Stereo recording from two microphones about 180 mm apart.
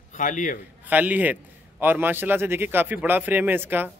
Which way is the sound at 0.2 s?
45° left (ahead or behind).